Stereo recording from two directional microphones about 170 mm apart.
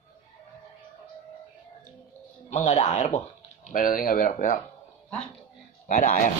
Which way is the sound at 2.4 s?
40° left (ahead or behind).